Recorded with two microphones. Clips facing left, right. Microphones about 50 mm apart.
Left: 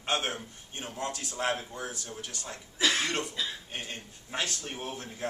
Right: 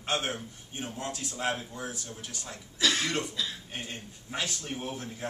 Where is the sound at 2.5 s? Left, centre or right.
Centre.